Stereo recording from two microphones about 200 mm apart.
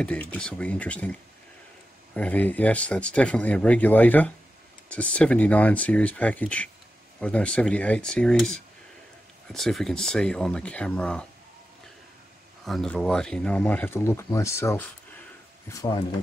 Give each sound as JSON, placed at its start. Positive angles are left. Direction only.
{"t": 0.0, "sound": "speech", "side_deg": 5}
{"t": 2.1, "sound": "speech", "side_deg": 5}
{"t": 12.6, "sound": "speech", "side_deg": 0}